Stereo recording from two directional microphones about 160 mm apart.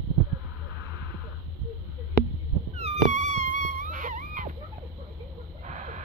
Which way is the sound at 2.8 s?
45° right (ahead or behind).